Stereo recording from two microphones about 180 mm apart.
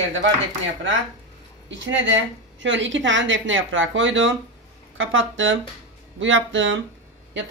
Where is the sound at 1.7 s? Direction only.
90° right.